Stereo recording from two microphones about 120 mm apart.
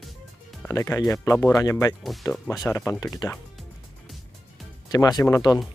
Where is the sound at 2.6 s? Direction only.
20° left (ahead or behind).